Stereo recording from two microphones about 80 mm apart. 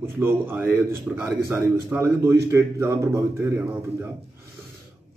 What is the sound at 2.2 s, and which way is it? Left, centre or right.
Speech, right.